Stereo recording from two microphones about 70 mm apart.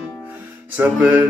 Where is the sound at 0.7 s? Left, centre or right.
Right.